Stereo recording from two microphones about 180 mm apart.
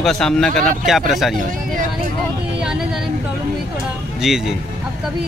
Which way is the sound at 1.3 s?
50° right (ahead or behind).